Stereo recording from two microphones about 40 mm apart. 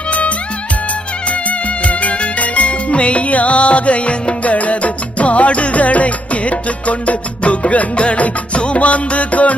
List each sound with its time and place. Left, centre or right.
1.9 s music: left